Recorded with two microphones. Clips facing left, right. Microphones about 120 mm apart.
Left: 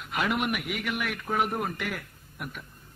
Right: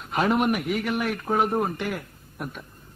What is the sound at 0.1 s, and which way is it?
A man's voice, 35° right (ahead or behind).